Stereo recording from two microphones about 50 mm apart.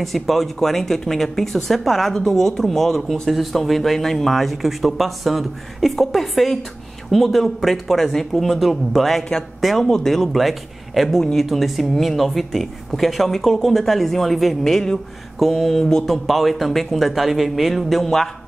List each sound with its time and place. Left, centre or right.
0.0 s speech: centre